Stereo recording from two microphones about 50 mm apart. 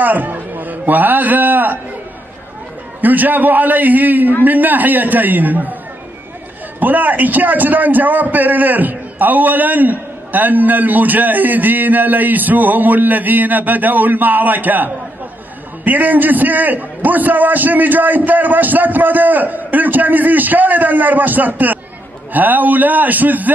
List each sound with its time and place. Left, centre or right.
0.0 s a man's voice: right
3.0 s a man's voice: right
6.8 s a man's voice: right